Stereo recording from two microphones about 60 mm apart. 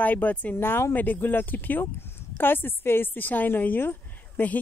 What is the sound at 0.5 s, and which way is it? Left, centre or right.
Speech, left.